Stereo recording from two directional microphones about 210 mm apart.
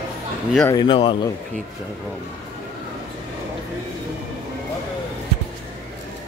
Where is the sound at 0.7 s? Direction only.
20° left (ahead or behind).